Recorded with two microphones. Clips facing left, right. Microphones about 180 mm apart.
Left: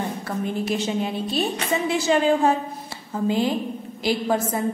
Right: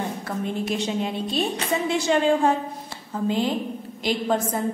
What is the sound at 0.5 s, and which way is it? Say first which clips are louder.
A woman's voice: left 1 dB; 5° left (ahead or behind).